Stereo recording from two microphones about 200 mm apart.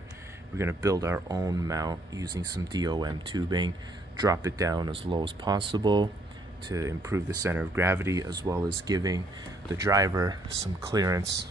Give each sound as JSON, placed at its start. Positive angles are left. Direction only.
{"t": 0.6, "sound": "speech", "side_deg": -15}